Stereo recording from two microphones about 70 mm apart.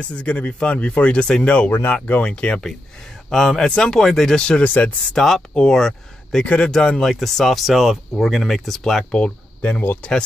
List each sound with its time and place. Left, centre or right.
0.1 s speech: centre
5.1 s speech: centre
9.2 s speech: centre